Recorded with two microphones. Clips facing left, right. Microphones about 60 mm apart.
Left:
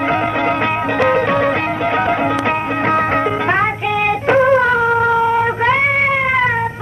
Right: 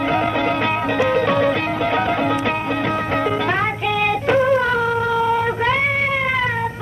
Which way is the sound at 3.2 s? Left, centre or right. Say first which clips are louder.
Left 3 dB; left.